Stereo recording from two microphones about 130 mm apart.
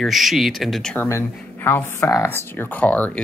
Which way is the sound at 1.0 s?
20° left (ahead or behind).